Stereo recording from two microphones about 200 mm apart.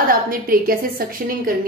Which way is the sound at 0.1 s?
45° right (ahead or behind).